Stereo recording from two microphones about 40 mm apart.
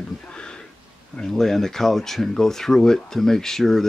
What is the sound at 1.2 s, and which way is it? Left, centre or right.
Speech, centre.